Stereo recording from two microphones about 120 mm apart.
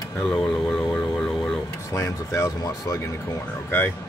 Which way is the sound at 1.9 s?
30° left (ahead or behind).